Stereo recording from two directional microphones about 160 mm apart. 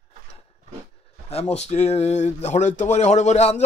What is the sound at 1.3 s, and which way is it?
Speech, 45° left (ahead or behind).